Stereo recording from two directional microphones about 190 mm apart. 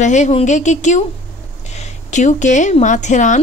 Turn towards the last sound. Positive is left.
turn(degrees=40)  # may be behind; listen again after turning